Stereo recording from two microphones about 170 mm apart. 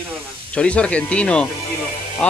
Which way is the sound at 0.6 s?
5° left (ahead or behind).